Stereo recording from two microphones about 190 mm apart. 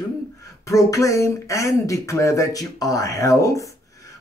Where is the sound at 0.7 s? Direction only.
15° left (ahead or behind).